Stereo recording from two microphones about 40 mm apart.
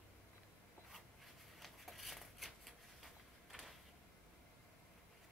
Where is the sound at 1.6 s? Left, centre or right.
Centre.